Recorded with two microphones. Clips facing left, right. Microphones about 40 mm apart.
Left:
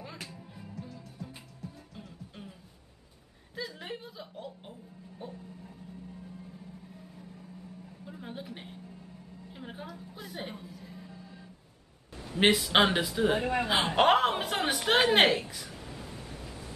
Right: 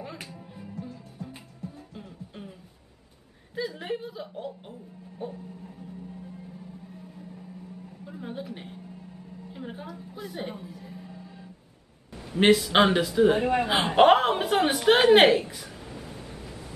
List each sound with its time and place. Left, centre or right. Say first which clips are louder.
0.0 s music: right 4 dB; centre
1.2 s music: right 4 dB; right
2.0 s music: right 4 dB; centre
3.5 s chuckle: right 7 dB; centre
5.2 s a sound: right 7 dB; right
8.0 s a sound: right 5 dB; centre
10.6 s music: right 4 dB; centre
12.4 s a man's voice: right 4 dB; centre
13.5 s a man's voice: right 4 dB; right
14.0 s a man's voice: right 7 dB; centre
15.5 s a sound: right 2 dB; centre